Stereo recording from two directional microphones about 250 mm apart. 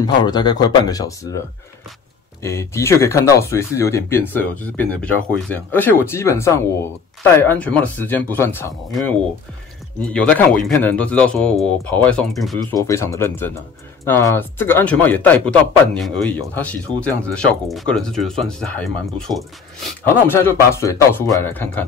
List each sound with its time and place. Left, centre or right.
0.0 s speech: centre
2.4 s speech: centre
10.1 s speech: centre
12.8 s speech: centre